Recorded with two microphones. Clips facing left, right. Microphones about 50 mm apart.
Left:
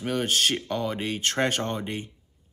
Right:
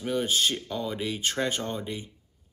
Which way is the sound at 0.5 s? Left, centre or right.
Left.